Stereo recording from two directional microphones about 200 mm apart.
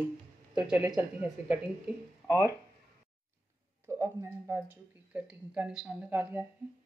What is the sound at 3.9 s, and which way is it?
Speech, 15° right (ahead or behind).